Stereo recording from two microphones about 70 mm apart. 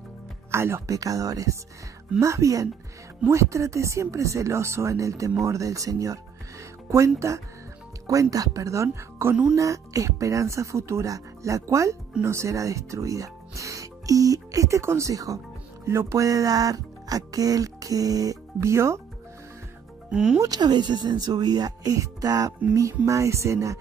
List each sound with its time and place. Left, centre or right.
0.5 s speech: right
0.8 s speech: right
7.2 s speech: right
18.6 s speech: right
20.1 s speech: centre
20.3 s speech: right